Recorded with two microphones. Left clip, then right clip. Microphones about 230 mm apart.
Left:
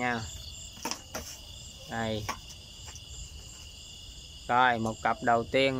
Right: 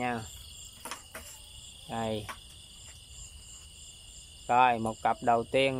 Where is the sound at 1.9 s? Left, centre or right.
Centre.